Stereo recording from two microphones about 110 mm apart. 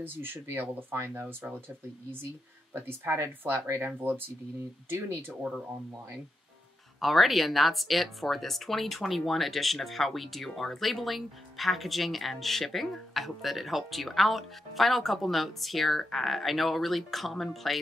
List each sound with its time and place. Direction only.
0.0 s speech: 20° right (ahead or behind)
2.7 s speech: 20° right (ahead or behind)
7.0 s speech: centre (ahead or behind)